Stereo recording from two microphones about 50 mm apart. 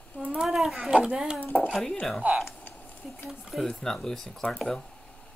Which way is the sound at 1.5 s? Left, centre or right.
Right.